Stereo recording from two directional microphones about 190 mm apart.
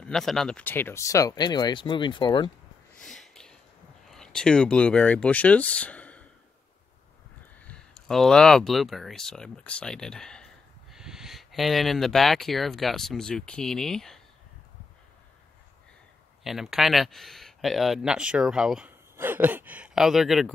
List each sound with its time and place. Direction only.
0.0 s speech: centre (ahead or behind); by 2.5 s 25° left (ahead or behind)
3.0 s a sound: centre (ahead or behind)
4.1 s speech: 5° left (ahead or behind)
7.6 s speech: 5° left (ahead or behind)
16.4 s speech: centre (ahead or behind)